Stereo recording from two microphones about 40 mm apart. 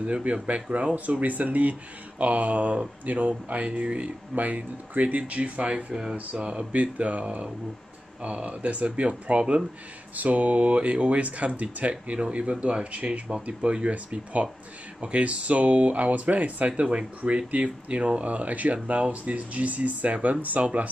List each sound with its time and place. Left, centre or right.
0.0 s speech: right
6.7 s speech: right
10.1 s speech: right